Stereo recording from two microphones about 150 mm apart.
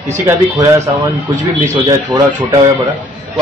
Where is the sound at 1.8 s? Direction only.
25° right (ahead or behind).